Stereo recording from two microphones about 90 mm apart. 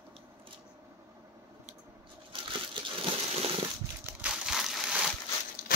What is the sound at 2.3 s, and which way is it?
Crumpling, 70° right (ahead or behind).